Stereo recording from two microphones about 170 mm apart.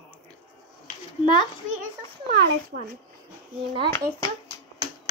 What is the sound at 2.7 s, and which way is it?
Speech, 60° right (ahead or behind).